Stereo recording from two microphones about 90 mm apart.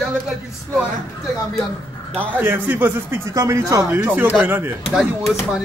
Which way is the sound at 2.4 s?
20° right (ahead or behind).